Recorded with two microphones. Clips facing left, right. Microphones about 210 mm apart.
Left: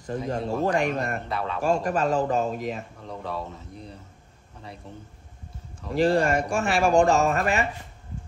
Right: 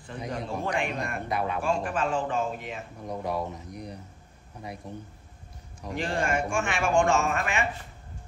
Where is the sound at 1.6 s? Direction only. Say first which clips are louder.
Left 4 dB; 40° left (ahead or behind).